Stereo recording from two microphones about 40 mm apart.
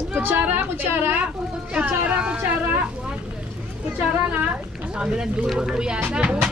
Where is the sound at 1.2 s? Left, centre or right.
Right.